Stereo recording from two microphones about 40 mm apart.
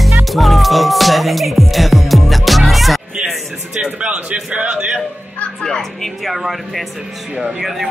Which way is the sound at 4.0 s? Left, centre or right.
Right.